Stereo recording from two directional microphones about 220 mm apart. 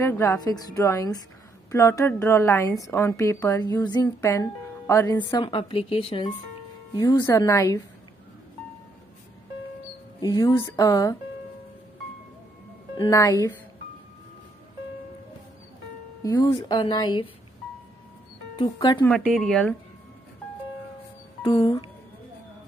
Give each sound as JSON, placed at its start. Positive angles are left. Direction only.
{"t": 0.0, "sound": "a woman's voice", "side_deg": 15}
{"t": 10.2, "sound": "a woman's voice", "side_deg": 15}
{"t": 12.9, "sound": "a woman's voice", "side_deg": 20}
{"t": 16.2, "sound": "speech", "side_deg": 15}
{"t": 18.6, "sound": "speech", "side_deg": 20}
{"t": 19.0, "sound": "speech", "side_deg": 5}
{"t": 21.5, "sound": "speech", "side_deg": 25}